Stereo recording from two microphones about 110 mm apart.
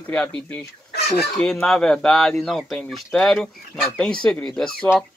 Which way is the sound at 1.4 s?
5° left (ahead or behind).